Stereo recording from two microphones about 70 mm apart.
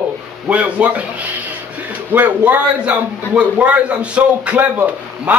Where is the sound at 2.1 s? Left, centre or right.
Right.